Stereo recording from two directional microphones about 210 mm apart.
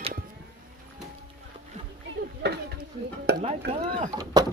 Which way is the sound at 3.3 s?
50° right (ahead or behind).